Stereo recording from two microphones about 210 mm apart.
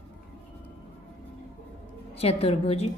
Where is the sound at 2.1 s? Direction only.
30° left (ahead or behind).